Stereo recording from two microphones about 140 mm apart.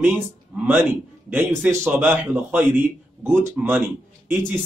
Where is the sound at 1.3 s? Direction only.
15° right (ahead or behind).